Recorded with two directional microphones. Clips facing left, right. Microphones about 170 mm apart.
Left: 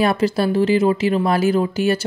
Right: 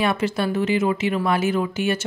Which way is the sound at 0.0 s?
35° left (ahead or behind).